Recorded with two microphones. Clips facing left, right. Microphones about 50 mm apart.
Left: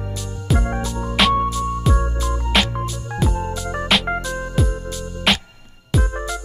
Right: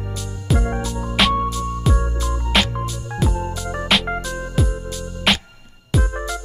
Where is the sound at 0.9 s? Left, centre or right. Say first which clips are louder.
Left 1 dB; left.